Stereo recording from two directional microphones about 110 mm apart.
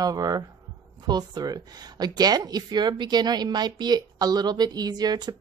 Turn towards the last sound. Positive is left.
turn(degrees=-40)  # may be behind; listen again after turning